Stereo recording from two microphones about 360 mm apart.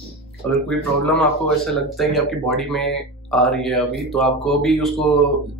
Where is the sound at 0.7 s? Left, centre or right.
Centre.